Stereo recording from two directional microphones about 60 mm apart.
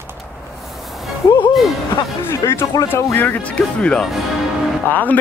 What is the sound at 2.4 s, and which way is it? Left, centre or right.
Speech, left.